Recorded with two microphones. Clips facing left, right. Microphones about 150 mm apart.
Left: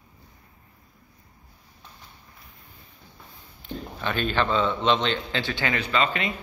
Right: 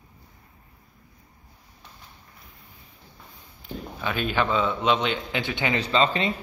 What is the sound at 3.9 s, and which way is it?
A man's voice, 5° right (ahead or behind).